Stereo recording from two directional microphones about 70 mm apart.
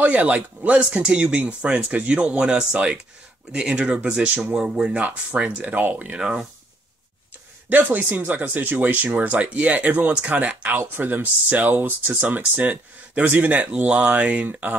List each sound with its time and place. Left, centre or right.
0.0 s speech: centre
6.1 s speech: centre
7.7 s speech: right